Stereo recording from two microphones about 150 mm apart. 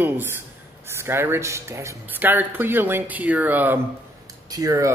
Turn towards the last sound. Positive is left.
turn(degrees=-20)  # may be behind; listen again after turning